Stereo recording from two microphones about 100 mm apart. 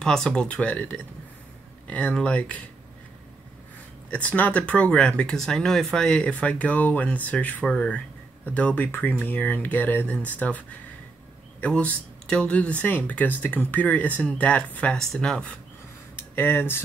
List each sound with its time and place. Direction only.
0.0 s speech: 5° left (ahead or behind)
4.1 s speech: 15° left (ahead or behind)
11.6 s speech: 15° left (ahead or behind)
16.2 s speech: 20° left (ahead or behind)